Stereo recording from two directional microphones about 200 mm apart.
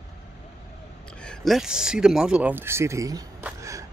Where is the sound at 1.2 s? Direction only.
Centre (ahead or behind).